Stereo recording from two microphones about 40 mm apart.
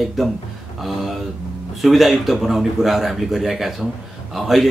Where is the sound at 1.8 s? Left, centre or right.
Centre.